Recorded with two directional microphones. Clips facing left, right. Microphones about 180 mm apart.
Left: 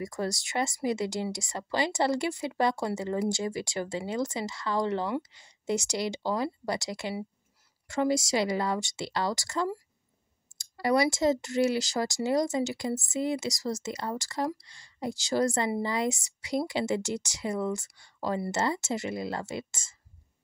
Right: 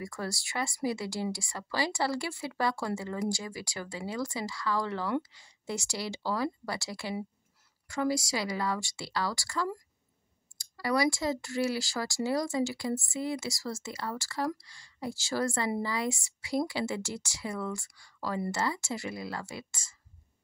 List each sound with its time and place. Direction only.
0.0 s speech: 20° left (ahead or behind)